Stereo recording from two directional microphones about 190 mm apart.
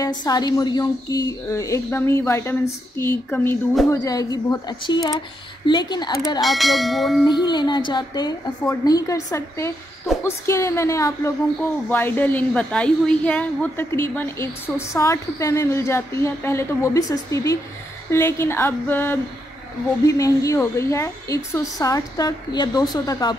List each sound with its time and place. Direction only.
0.0 s a woman's voice: 20° left (ahead or behind)
6.4 s bell: centre (ahead or behind)
7.2 s a woman's voice: 25° left (ahead or behind)